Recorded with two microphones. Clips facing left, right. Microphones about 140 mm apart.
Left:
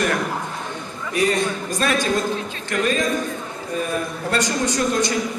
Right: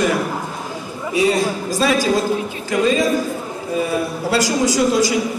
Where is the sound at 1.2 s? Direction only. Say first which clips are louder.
Right 4 dB; 5° right (ahead or behind).